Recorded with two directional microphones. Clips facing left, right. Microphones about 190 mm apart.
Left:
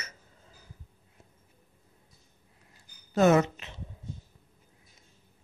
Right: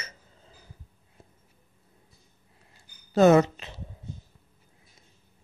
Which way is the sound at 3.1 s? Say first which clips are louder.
Right 4 dB; 35° right (ahead or behind).